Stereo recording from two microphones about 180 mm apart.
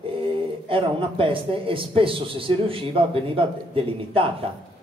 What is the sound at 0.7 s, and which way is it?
Speech, 30° right (ahead or behind).